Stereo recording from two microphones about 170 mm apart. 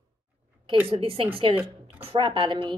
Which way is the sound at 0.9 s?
35° right (ahead or behind).